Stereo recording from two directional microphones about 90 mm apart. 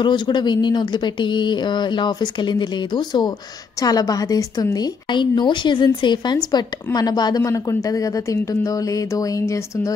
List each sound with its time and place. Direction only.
0.0 s a woman's voice: 55° left (ahead or behind); by 4.8 s 40° left (ahead or behind)
5.1 s a woman's voice: 60° left (ahead or behind); by 9.9 s 35° left (ahead or behind)